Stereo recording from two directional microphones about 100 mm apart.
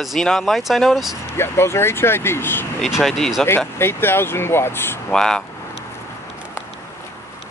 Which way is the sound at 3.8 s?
25° left (ahead or behind).